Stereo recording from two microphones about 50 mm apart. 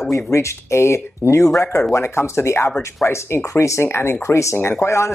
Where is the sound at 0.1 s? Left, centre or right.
Left.